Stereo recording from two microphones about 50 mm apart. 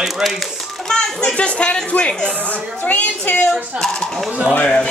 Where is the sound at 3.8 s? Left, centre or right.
Centre.